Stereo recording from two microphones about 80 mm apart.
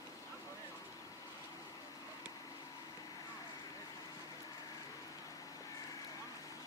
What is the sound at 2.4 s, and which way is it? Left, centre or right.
Vehicle, left.